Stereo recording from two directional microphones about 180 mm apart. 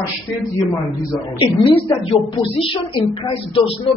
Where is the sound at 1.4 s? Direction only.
25° left (ahead or behind).